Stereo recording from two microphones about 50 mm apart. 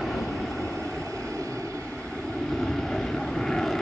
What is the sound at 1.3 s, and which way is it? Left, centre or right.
Vehicle, right.